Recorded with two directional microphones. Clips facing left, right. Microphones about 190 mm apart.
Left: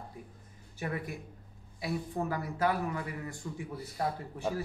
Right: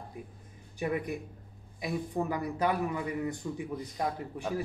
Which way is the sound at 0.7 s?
20° right (ahead or behind).